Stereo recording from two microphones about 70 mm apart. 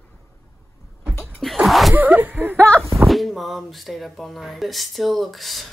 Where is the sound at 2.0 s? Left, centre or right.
Right.